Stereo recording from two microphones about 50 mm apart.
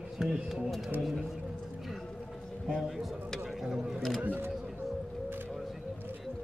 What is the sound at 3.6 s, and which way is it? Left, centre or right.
Speech, centre.